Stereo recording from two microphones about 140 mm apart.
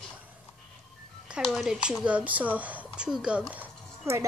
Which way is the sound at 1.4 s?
5° right (ahead or behind).